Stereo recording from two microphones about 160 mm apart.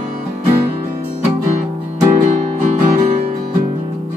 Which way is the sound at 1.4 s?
45° right (ahead or behind).